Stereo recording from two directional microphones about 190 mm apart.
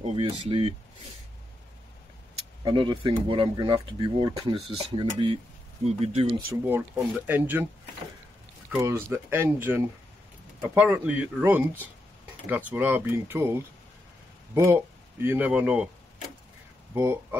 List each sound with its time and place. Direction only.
0.0 s speech: 30° right (ahead or behind)
2.6 s speech: 25° right (ahead or behind)
6.6 s speech: 10° right (ahead or behind)
8.7 s speech: 15° right (ahead or behind)
16.9 s speech: 10° right (ahead or behind)